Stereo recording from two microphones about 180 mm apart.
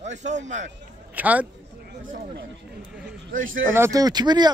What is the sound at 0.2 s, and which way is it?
Speech, 40° right (ahead or behind).